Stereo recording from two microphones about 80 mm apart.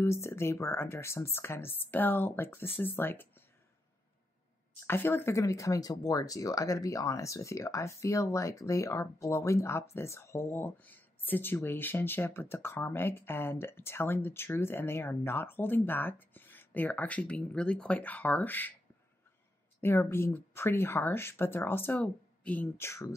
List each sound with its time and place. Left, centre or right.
0.0 s speech: left
4.8 s speech: left
5.4 s speech: left
19.8 s speech: left
22.8 s speech: left